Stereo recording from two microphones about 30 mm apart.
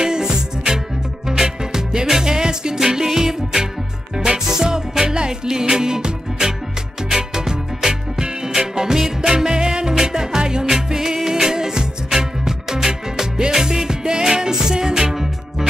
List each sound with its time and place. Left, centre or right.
0.0 s music: right